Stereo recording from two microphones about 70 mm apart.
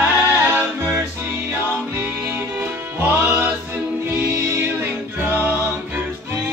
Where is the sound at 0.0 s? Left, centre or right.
Right.